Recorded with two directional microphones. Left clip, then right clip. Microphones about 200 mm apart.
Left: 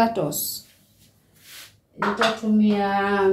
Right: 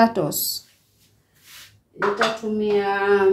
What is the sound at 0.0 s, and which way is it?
Speech, 30° right (ahead or behind).